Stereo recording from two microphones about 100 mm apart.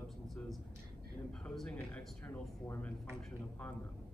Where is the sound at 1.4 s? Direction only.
5° left (ahead or behind).